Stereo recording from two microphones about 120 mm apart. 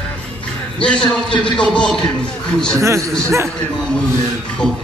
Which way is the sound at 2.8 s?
25° right (ahead or behind).